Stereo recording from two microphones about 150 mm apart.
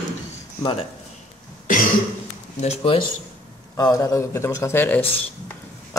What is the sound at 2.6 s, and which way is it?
Speech, 40° left (ahead or behind).